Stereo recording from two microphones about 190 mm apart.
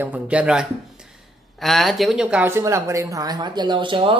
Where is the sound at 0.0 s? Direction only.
10° right (ahead or behind).